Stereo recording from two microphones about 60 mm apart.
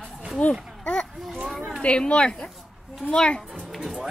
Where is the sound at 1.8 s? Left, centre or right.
Centre.